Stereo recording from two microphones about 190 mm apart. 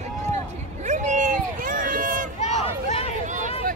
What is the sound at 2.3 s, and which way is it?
Crowd, 35° left (ahead or behind).